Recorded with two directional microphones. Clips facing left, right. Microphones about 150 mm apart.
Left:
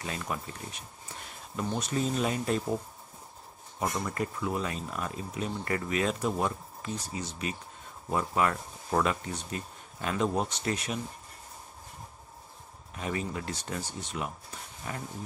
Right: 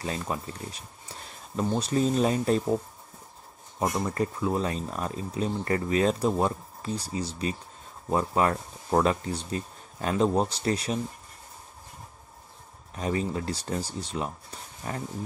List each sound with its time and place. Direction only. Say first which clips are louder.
0.0 s speech: right 4 dB; 30° right (ahead or behind)
3.8 s speech: right 4 dB; 30° right (ahead or behind)
12.9 s speech: right 5 dB; 35° right (ahead or behind)